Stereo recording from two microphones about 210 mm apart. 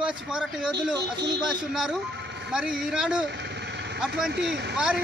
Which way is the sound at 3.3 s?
55° right (ahead or behind).